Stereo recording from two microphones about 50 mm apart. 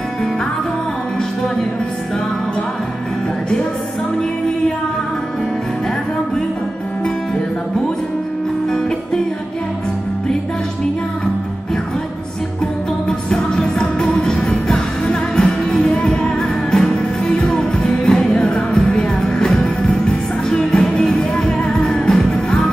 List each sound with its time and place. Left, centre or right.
13.3 s music: centre